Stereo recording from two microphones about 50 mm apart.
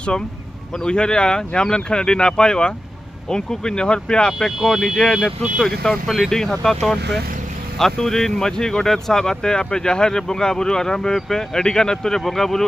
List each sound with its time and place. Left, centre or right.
0.8 s speech: centre
4.6 s speech: centre
6.5 s speech: centre